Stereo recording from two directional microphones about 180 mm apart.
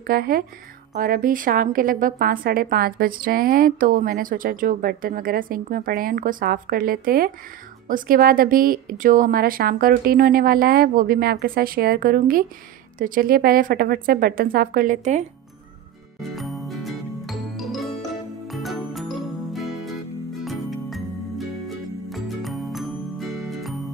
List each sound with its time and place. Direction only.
0.0 s a woman's voice: 55° right (ahead or behind)
16.2 s music: centre (ahead or behind)